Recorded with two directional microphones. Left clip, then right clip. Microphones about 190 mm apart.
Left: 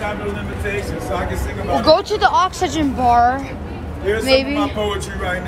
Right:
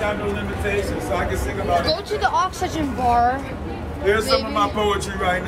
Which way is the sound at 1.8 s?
30° left (ahead or behind).